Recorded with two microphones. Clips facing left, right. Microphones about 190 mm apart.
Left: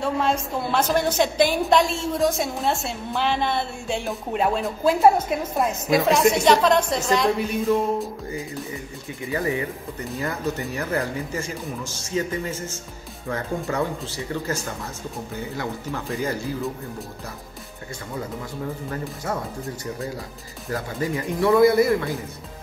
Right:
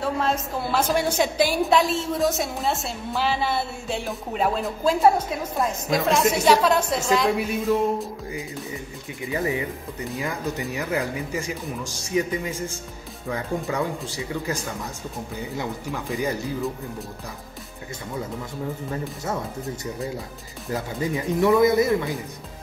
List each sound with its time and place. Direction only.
0.0 s a woman's voice: centre (ahead or behind)
9.2 s speech: 20° right (ahead or behind)
19.2 s speech: 25° right (ahead or behind)
20.7 s speech: 20° right (ahead or behind)